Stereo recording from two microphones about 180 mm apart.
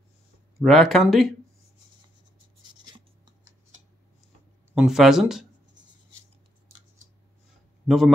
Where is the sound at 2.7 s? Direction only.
25° right (ahead or behind).